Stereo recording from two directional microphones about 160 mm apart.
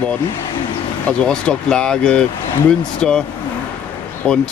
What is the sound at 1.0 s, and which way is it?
Speech, 5° left (ahead or behind).